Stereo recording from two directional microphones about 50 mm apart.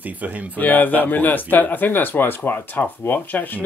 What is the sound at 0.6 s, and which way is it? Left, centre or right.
Speech, left.